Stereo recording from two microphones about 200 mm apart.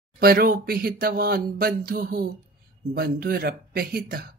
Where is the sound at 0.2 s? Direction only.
50° right (ahead or behind).